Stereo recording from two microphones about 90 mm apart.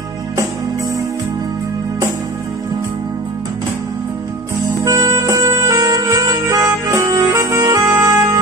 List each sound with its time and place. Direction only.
4.8 s music: 50° right (ahead or behind)
5.1 s music: 35° right (ahead or behind)